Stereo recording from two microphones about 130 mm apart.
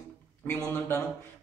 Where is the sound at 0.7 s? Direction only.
15° left (ahead or behind).